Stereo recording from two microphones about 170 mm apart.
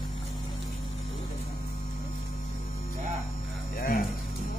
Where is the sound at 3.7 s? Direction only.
55° left (ahead or behind).